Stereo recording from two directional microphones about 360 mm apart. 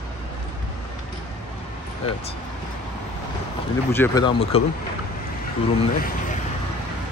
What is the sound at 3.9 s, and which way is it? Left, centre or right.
Speech, centre.